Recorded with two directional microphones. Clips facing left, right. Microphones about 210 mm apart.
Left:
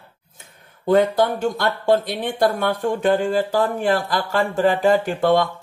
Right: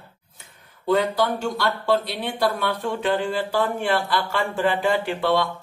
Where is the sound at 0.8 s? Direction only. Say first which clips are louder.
Left 4 dB; 50° left (ahead or behind).